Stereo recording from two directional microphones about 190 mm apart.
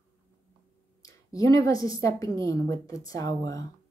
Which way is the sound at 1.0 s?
15° left (ahead or behind).